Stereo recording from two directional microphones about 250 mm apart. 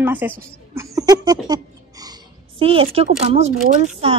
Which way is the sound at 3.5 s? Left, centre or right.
Right.